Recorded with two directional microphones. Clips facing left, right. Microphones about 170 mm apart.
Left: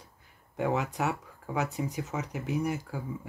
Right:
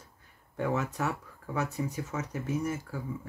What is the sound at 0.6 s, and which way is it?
Speech, 15° left (ahead or behind).